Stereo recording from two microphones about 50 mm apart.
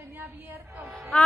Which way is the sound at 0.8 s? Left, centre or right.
Centre.